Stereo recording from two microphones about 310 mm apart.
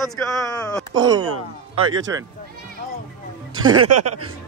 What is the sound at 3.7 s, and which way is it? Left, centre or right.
Speech, right.